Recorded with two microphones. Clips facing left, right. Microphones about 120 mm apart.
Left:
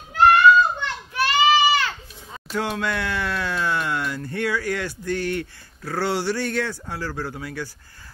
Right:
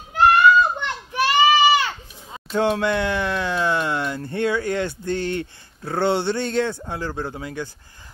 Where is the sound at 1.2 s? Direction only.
15° right (ahead or behind).